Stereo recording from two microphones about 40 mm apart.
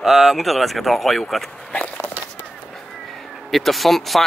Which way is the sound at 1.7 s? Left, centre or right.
Left.